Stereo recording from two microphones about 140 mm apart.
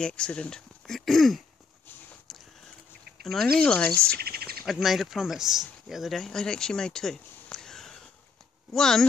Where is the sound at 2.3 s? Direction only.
Centre (ahead or behind).